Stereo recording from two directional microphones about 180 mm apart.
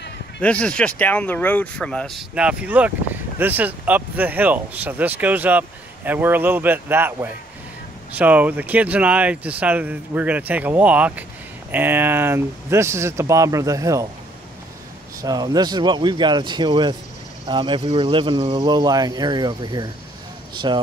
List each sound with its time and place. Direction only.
0.4 s speech: 5° left (ahead or behind); by 14.0 s 20° right (ahead or behind)
15.2 s speech: 20° right (ahead or behind)